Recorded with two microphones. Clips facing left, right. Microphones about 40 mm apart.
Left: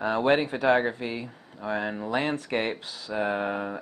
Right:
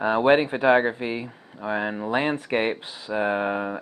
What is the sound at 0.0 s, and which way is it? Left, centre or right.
Speech, centre.